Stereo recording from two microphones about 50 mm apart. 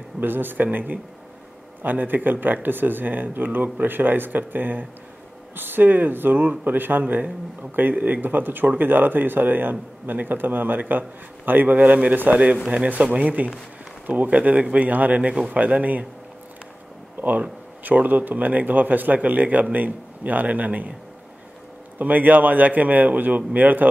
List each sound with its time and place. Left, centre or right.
0.2 s speech: right
17.2 s speech: right
21.9 s speech: right